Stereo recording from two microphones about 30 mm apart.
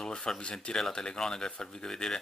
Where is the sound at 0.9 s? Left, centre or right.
Left.